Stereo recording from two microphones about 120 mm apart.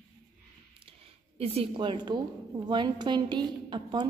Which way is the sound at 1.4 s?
55° right (ahead or behind).